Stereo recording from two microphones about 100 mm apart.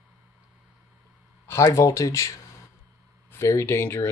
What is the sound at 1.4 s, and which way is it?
Speech, 30° left (ahead or behind).